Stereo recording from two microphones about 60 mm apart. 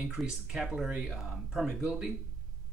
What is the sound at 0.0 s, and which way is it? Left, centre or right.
Speech, centre.